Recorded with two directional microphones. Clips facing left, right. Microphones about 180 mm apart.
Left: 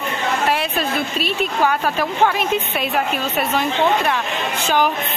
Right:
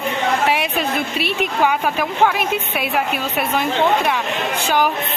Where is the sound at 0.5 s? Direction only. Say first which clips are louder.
Right 1 dB; 10° right (ahead or behind).